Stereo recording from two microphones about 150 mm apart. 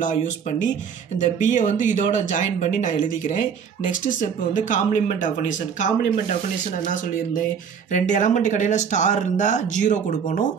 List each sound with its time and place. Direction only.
0.0 s speech: 55° left (ahead or behind)
7.9 s speech: 55° left (ahead or behind)